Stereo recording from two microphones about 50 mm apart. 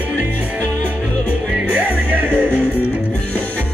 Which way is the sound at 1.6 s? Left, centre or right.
Right.